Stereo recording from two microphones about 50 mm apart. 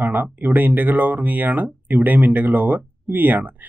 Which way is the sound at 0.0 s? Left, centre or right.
Right.